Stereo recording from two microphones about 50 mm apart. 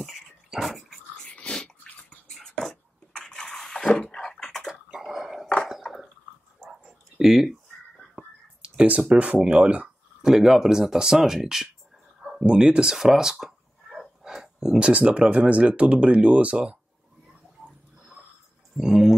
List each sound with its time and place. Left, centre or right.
0.0 s dog: centre
2.2 s bathtub: centre
5.0 s a sound: centre
6.6 s dog: centre
8.6 s a sound: right
9.2 s speech: centre
10.2 s speech: centre
12.4 s speech: right
12.9 s a sound: centre
14.8 s speech: right
18.8 s speech: centre